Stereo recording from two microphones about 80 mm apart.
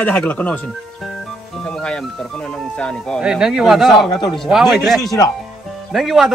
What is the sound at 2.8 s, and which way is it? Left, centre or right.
Speech, centre.